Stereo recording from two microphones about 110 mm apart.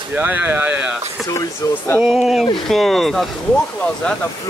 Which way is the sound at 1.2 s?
30° left (ahead or behind).